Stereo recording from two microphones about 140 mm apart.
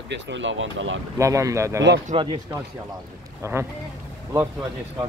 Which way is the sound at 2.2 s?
40° right (ahead or behind).